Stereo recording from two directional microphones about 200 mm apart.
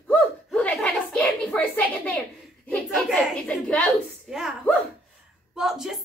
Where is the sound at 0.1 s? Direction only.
5° left (ahead or behind).